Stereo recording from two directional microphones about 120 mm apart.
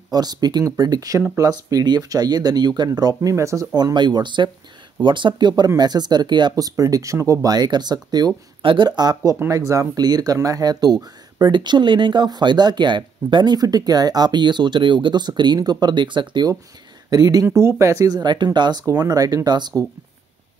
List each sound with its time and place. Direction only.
0.1 s speech: 35° right (ahead or behind)
17.5 s speech: 20° right (ahead or behind)